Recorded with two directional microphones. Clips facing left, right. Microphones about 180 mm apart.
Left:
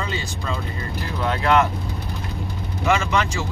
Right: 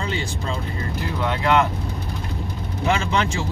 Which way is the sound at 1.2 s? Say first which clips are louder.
Left 1 dB; 20° right (ahead or behind).